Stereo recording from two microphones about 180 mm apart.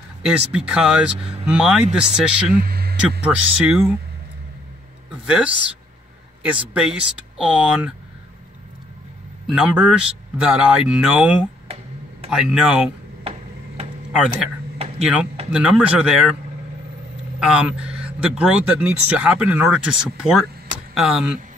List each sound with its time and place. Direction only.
0.2 s speech: 5° right (ahead or behind)
2.5 s a sound: 55° right (ahead or behind)
3.0 s speech: 5° right (ahead or behind)
5.2 s speech: 5° right (ahead or behind)
6.7 s speech: 5° right (ahead or behind)
9.5 s speech: 5° right (ahead or behind)
14.1 s speech: 5° right (ahead or behind)
17.4 s speech: 5° right (ahead or behind)